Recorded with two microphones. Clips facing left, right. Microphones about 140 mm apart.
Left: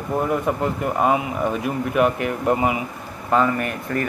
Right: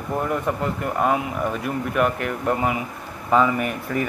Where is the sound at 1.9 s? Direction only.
10° left (ahead or behind).